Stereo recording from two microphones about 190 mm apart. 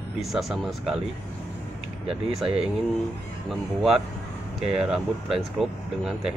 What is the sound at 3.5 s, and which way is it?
Speech, centre (ahead or behind).